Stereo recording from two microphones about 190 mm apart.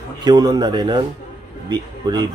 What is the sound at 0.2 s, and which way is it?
Speech, 20° right (ahead or behind).